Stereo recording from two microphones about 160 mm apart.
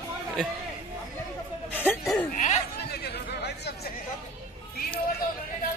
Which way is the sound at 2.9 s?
85° left.